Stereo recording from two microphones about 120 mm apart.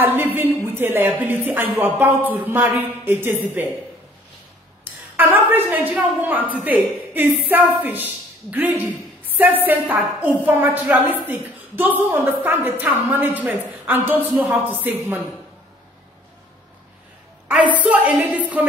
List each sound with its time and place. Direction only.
0.0 s a woman's voice: 15° right (ahead or behind)
5.1 s a sound: 15° right (ahead or behind)
5.5 s a woman's voice: 15° right (ahead or behind)
17.8 s a woman's voice: 10° right (ahead or behind)